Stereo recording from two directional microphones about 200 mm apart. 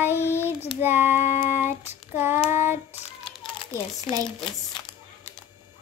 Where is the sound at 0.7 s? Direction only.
10° right (ahead or behind).